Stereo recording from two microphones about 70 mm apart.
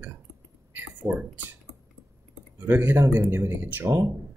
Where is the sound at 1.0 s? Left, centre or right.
Right.